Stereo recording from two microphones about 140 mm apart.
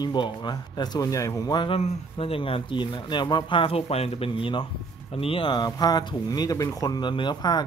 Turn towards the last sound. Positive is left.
turn(degrees=30)  # may be behind; listen again after turning